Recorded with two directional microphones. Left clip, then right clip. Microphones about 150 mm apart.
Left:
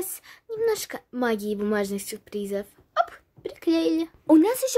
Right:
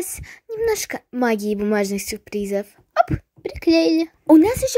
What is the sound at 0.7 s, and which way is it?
Speech, 30° right (ahead or behind).